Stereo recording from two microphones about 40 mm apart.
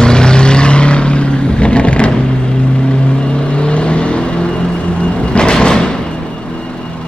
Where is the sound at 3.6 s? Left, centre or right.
Left.